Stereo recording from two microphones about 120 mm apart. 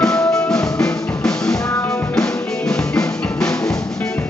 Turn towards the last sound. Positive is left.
turn(degrees=5)  # may be behind; listen again after turning